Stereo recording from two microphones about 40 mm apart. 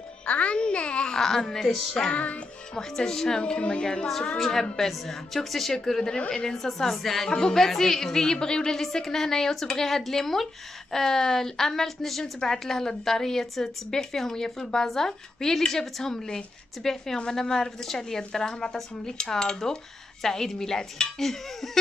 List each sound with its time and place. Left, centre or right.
0.3 s babbling: left
1.1 s speech: centre
2.0 s music: left
2.7 s a woman's voice: centre
4.4 s speech: centre
7.2 s speech: centre